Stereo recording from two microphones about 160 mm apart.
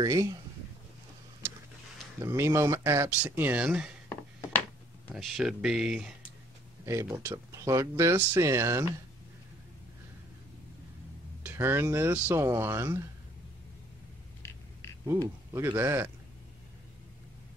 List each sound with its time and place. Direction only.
0.0 s speech: 20° right (ahead or behind)
2.1 s speech: 20° right (ahead or behind)
4.1 s a sound: 15° left (ahead or behind)
5.1 s speech: centre (ahead or behind)
6.9 s speech: 15° right (ahead or behind)
11.4 s speech: 15° right (ahead or behind)
15.0 s speech: 15° right (ahead or behind)